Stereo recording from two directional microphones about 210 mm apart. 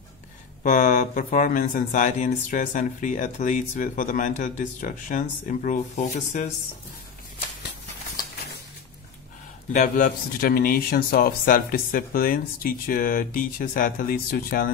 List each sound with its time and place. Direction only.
0.7 s speech: 35° left (ahead or behind)
9.7 s a man's voice: 40° left (ahead or behind)